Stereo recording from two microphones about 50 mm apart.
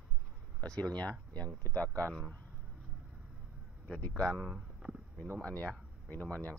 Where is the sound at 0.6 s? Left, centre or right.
Centre.